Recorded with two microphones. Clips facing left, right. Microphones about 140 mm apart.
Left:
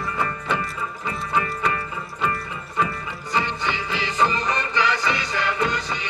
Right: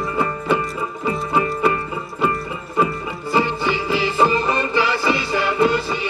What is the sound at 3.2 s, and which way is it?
Music, 5° right (ahead or behind).